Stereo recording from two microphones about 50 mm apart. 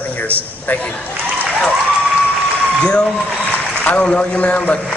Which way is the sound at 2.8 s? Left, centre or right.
Centre.